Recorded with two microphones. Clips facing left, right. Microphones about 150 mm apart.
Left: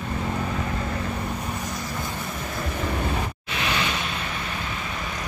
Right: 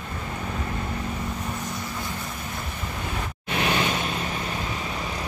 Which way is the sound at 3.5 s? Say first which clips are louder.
Right 4 dB; 45° right (ahead or behind).